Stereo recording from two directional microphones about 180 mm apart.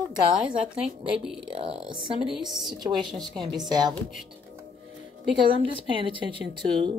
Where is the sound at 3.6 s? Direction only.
25° right (ahead or behind).